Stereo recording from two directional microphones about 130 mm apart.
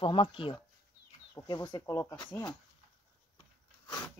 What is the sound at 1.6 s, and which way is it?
Speech, 25° left (ahead or behind).